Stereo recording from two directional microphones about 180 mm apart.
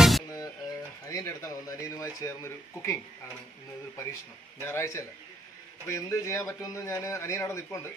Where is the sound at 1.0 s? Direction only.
15° left (ahead or behind).